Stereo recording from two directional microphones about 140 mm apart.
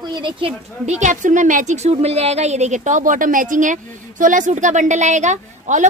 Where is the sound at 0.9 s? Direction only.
60° right (ahead or behind).